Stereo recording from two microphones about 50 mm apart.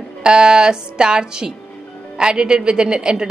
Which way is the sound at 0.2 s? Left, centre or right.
Centre.